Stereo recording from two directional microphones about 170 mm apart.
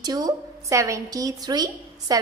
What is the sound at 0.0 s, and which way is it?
A woman's voice, 25° right (ahead or behind).